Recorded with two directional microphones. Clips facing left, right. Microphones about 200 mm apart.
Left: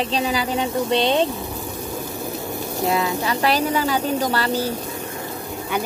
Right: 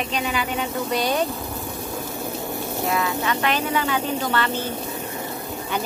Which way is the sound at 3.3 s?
35° left (ahead or behind).